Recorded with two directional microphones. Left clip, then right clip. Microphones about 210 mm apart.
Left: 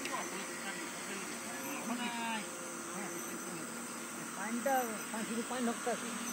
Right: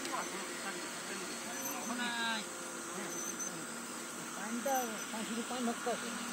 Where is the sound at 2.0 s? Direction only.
40° right (ahead or behind).